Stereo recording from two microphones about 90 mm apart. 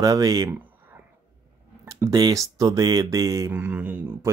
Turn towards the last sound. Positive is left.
turn(degrees=-20)  # may be behind; listen again after turning